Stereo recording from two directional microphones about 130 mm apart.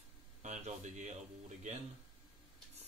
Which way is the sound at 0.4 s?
70° right (ahead or behind).